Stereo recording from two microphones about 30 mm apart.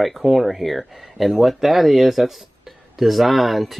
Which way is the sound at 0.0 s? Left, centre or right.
Centre.